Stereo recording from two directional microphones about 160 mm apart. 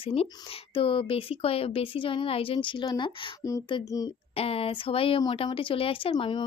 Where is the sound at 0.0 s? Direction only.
35° left (ahead or behind).